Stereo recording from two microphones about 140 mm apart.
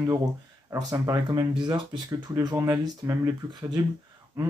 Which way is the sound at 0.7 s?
30° right (ahead or behind).